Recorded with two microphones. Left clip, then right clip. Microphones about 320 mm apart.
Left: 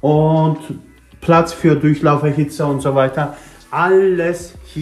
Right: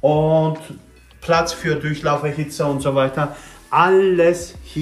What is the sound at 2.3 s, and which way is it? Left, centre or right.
Speech, centre.